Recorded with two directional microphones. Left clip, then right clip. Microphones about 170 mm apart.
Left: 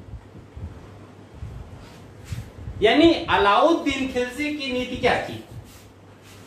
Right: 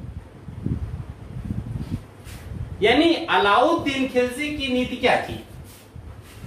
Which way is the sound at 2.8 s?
25° left (ahead or behind).